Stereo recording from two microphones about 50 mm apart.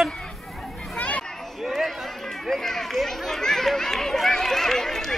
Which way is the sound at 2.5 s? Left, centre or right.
Centre.